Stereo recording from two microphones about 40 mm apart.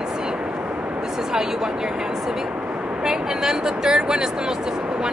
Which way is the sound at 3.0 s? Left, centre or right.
Centre.